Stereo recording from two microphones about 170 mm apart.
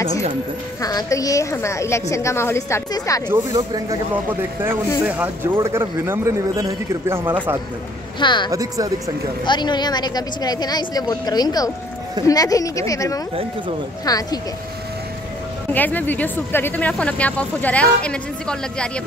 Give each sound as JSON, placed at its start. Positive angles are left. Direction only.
{"t": 0.7, "sound": "speech", "side_deg": 20}
{"t": 3.3, "sound": "a man's voice", "side_deg": -20}
{"t": 8.2, "sound": "speech", "side_deg": 25}
{"t": 8.5, "sound": "speech", "side_deg": -20}
{"t": 9.4, "sound": "speech", "side_deg": 25}
{"t": 15.7, "sound": "speech", "side_deg": 10}